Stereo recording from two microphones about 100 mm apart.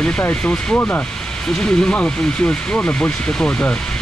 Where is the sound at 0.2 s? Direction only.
15° left (ahead or behind).